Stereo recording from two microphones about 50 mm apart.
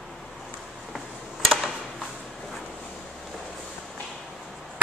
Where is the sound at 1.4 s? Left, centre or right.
Centre.